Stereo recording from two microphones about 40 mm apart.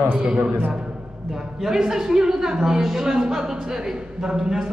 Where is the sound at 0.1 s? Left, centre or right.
Right.